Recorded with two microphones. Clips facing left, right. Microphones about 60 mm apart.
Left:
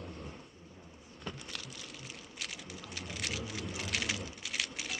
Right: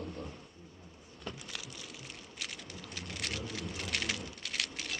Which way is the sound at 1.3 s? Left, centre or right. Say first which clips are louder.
Even; centre.